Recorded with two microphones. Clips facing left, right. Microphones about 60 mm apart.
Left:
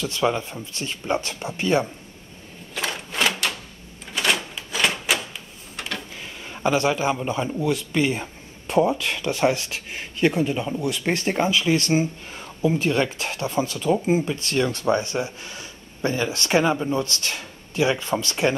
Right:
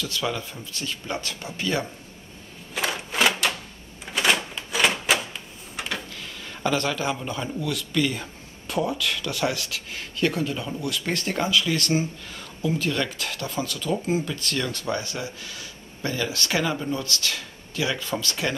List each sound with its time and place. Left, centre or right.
0.0 s a man's voice: left
2.7 s typewriter: centre
5.8 s power windows: centre
6.1 s a man's voice: left